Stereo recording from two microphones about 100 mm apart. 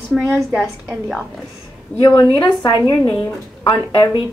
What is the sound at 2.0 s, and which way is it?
A woman's voice, 45° left (ahead or behind).